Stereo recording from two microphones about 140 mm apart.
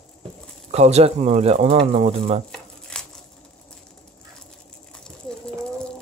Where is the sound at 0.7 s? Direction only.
50° right (ahead or behind).